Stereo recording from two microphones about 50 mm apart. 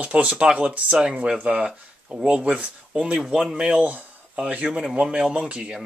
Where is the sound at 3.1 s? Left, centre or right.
Centre.